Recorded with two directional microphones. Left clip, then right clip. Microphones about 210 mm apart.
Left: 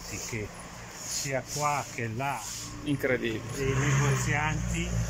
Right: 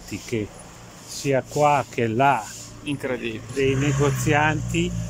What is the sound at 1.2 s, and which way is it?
Speech, 50° right (ahead or behind).